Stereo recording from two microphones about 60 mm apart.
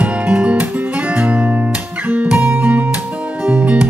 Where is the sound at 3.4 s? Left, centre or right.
Centre.